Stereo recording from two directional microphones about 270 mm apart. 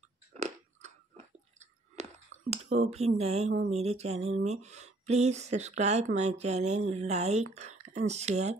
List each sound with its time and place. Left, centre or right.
0.3 s chewing: right
2.0 s a sound: right
2.5 s speech: right